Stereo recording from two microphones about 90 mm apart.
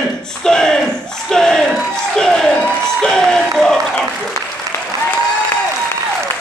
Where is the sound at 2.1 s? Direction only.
5° left (ahead or behind).